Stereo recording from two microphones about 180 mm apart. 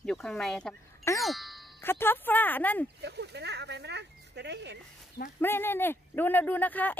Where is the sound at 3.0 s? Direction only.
65° right (ahead or behind).